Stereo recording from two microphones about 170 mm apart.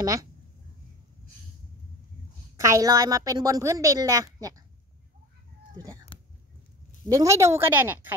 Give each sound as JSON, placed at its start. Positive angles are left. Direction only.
{"t": 0.0, "sound": "a woman's voice", "side_deg": -20}
{"t": 2.5, "sound": "a woman's voice", "side_deg": -20}
{"t": 6.1, "sound": "whispering", "side_deg": 30}
{"t": 7.1, "sound": "speech", "side_deg": -20}